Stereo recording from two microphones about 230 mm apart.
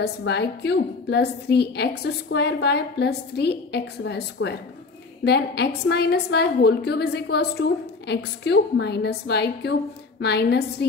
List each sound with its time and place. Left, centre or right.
0.0 s a woman's voice: left